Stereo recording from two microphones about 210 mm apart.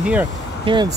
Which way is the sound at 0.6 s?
20° right (ahead or behind).